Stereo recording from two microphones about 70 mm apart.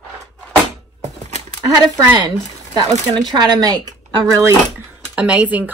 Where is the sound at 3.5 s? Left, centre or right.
Right.